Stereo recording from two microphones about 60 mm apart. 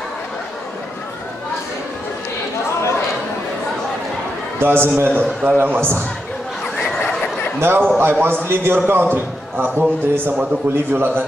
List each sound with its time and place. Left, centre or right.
4.6 s a man's voice: right
7.6 s a man's voice: right